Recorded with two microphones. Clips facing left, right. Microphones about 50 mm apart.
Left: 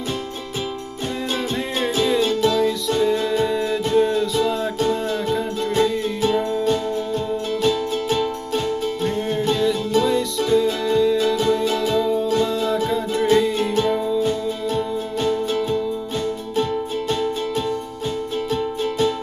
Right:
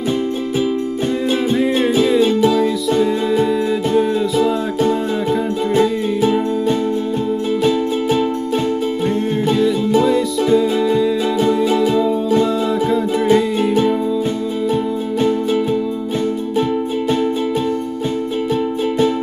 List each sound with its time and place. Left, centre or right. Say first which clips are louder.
1.6 s music: right 6 dB; centre